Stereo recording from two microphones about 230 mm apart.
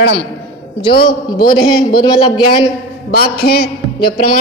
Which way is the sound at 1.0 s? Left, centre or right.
Left.